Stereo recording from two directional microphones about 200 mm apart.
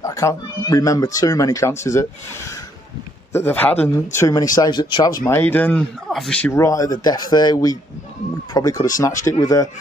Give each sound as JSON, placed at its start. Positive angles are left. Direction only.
{"t": 0.0, "sound": "speech", "side_deg": 15}